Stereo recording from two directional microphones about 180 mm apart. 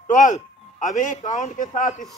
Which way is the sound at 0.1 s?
45° left (ahead or behind).